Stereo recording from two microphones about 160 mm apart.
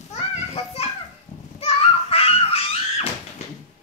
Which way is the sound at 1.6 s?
40° left (ahead or behind).